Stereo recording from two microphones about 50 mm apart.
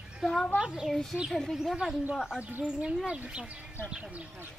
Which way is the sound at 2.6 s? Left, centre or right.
Right.